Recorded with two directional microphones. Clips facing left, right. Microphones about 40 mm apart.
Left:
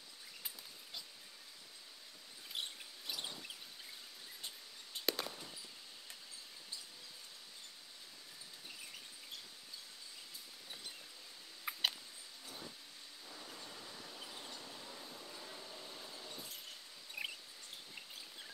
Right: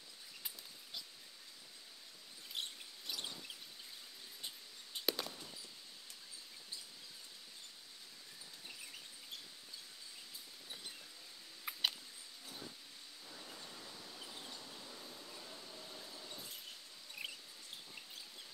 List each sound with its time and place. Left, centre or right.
2.5 s mouse: centre
4.9 s chop: centre
5.2 s a sound: centre
11.7 s mouse: centre
13.3 s a sound: centre
14.6 s train: centre
17.2 s mouse: centre